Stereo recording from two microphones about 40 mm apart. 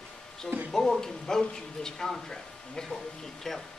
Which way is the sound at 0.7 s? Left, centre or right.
Centre.